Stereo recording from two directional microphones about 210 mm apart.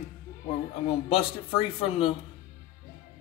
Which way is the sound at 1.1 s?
25° left (ahead or behind).